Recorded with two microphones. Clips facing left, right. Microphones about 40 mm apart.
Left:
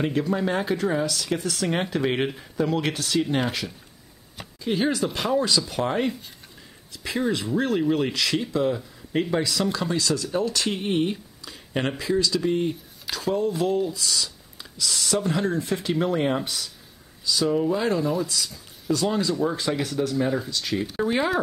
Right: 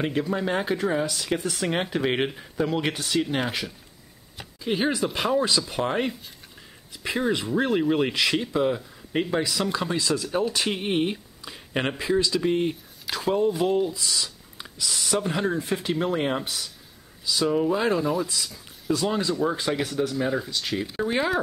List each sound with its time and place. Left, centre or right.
0.0 s speech: centre
13.5 s speech: centre